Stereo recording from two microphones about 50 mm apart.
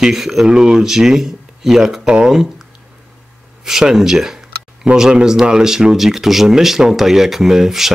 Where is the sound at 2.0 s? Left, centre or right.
Centre.